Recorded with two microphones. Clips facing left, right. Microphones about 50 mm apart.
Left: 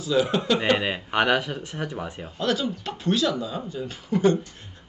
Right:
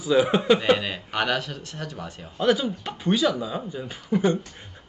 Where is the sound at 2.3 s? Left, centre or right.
Centre.